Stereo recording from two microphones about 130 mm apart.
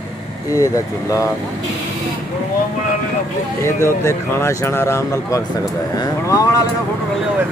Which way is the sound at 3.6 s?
20° left (ahead or behind).